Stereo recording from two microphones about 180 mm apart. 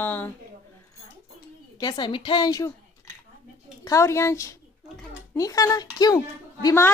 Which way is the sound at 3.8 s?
15° left (ahead or behind).